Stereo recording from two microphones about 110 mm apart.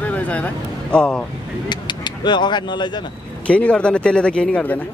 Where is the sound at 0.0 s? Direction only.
15° left (ahead or behind).